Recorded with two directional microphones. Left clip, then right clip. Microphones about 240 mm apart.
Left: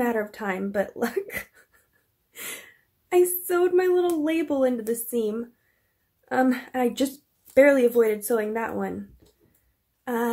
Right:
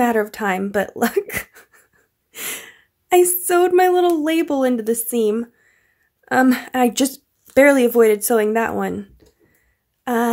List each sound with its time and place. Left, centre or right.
0.0 s speech: right
2.3 s a sound: right
4.2 s speech: right
10.0 s speech: right